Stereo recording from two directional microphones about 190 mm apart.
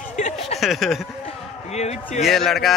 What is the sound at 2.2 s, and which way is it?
Speech, centre (ahead or behind).